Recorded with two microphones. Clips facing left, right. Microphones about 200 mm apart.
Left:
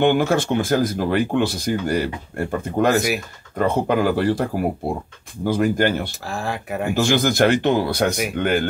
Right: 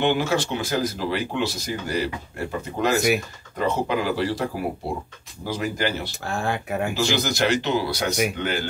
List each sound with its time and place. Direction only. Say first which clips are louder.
0.0 s speech: left 5 dB; 50° left (ahead or behind)
6.2 s speech: right 1 dB; centre (ahead or behind)
6.9 s speech: left 8 dB; 55° left (ahead or behind)